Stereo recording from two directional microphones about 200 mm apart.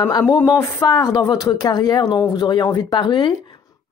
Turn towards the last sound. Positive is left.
turn(degrees=25)  # may be behind; listen again after turning